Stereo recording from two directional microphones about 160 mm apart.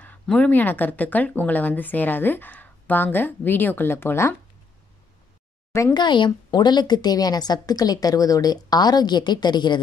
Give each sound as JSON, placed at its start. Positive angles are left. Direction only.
{"t": 0.0, "sound": "speech", "side_deg": 10}
{"t": 5.7, "sound": "speech", "side_deg": 15}
{"t": 5.9, "sound": "a woman's voice", "side_deg": 30}